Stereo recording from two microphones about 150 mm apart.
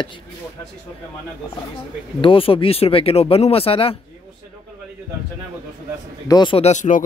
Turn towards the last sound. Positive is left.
turn(degrees=55)  # may be behind; listen again after turning